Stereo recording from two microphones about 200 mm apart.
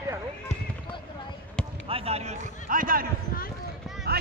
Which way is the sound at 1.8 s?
30° right (ahead or behind).